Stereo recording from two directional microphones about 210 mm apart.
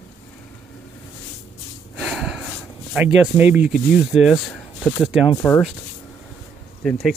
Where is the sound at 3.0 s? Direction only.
10° right (ahead or behind).